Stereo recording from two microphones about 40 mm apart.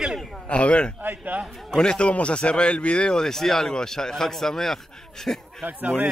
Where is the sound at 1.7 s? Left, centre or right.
Centre.